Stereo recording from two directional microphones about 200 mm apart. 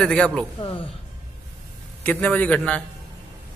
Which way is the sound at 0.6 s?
25° left (ahead or behind).